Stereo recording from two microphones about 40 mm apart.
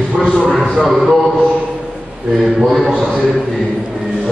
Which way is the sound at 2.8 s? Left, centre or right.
Centre.